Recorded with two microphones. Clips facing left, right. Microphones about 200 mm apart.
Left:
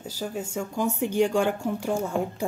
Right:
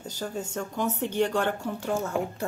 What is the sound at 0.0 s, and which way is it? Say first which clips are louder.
Speech: left 1 dB; 5° left (ahead or behind).